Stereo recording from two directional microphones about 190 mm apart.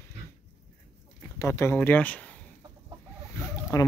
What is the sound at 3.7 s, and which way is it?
Speech, 15° left (ahead or behind).